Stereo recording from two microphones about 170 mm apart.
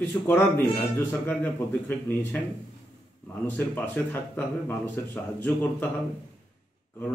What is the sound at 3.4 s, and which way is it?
Speech, 10° left (ahead or behind).